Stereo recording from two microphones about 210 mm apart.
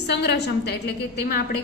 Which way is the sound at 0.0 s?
55° left (ahead or behind).